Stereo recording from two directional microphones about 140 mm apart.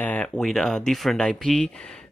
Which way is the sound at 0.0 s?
10° left (ahead or behind).